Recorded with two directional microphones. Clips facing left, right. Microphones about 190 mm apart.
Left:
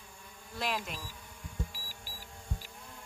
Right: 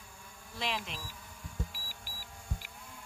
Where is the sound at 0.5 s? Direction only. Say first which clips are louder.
Left 2 dB; centre (ahead or behind).